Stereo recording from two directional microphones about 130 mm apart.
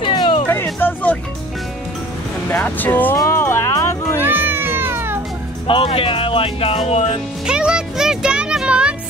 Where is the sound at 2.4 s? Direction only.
15° left (ahead or behind).